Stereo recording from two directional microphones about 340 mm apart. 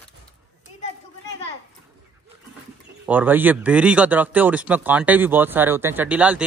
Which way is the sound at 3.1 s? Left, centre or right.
Centre.